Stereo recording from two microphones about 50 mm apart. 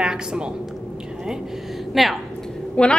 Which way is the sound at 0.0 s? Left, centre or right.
Centre.